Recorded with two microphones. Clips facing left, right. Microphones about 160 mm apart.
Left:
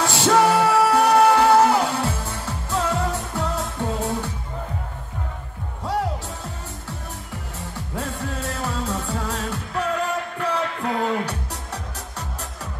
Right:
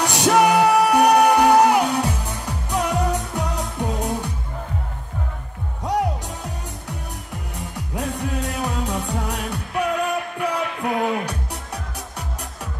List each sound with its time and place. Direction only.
0.0 s music: 15° right (ahead or behind)
7.9 s music: 15° right (ahead or behind)